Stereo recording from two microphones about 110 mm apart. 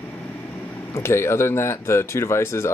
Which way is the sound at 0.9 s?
25° left (ahead or behind).